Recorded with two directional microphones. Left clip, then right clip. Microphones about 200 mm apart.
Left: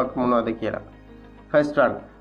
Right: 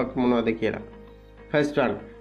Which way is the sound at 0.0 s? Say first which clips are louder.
Left 2 dB; 50° right (ahead or behind).